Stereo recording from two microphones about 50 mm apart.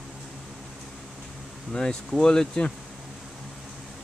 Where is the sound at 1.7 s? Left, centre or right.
Centre.